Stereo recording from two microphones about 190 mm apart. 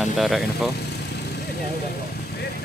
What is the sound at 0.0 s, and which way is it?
Speech, centre (ahead or behind).